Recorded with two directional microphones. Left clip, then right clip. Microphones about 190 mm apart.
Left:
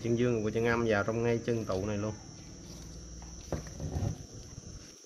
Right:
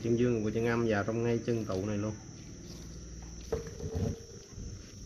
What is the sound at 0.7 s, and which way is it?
Speech, 20° left (ahead or behind).